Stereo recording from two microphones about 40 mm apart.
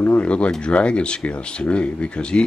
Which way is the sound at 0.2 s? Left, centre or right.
Left.